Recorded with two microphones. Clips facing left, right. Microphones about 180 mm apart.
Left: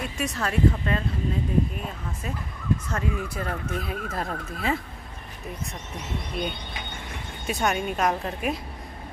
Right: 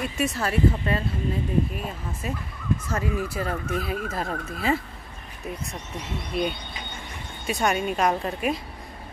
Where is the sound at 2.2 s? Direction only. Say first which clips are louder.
Even; 5° right (ahead or behind).